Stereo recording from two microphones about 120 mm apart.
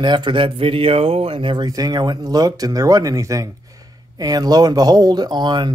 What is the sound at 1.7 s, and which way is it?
Speech, 35° right (ahead or behind).